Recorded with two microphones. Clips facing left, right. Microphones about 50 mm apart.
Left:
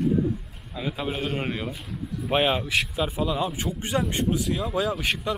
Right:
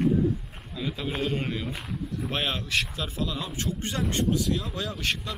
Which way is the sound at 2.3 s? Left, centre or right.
Centre.